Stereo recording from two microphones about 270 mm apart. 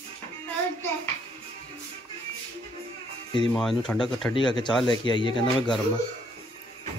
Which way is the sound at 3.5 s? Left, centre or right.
Centre.